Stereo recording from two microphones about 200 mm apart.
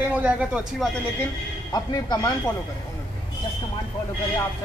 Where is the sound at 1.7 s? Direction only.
20° left (ahead or behind).